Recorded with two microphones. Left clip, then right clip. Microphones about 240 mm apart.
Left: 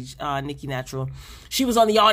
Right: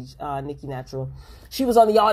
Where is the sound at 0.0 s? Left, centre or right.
Left.